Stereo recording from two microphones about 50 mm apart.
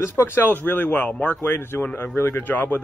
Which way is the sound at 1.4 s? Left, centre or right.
Left.